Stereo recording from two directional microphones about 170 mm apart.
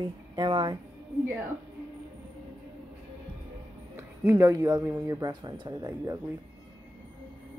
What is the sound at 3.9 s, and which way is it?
Speech, 15° right (ahead or behind).